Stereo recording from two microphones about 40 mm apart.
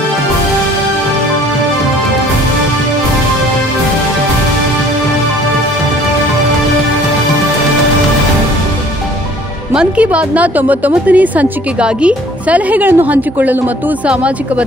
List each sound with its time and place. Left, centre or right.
9.8 s a woman's voice: right
11.8 s a woman's voice: right